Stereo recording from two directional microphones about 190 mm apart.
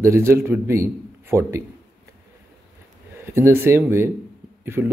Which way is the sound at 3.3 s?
15° right (ahead or behind).